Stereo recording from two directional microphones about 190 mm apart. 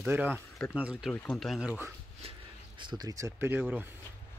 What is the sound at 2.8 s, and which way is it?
Speech, 20° right (ahead or behind).